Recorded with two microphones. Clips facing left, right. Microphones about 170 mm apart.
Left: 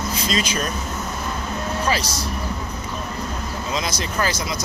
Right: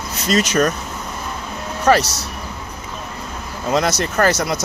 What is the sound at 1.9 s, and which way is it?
Speech, 70° right (ahead or behind).